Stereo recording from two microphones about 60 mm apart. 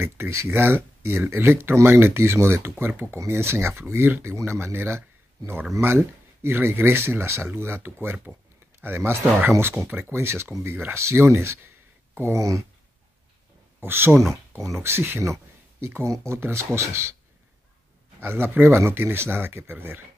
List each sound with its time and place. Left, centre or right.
0.0 s speech: right
3.2 s speech: right
12.2 s speech: right
13.7 s speech: right
16.0 s speech: right
18.2 s speech: right